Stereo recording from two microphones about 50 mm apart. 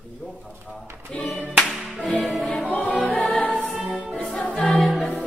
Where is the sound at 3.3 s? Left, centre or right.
Left.